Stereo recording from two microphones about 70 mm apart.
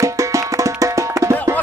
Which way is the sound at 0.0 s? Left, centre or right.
Right.